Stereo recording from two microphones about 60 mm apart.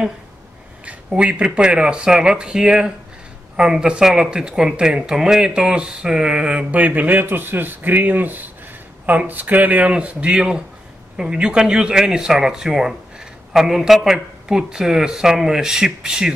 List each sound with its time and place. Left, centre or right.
0.8 s speech: centre